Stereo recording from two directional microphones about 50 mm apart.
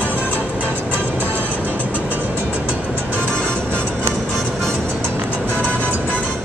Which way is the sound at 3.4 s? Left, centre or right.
Centre.